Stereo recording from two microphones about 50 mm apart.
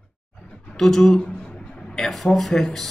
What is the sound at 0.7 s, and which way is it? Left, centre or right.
Speech, centre.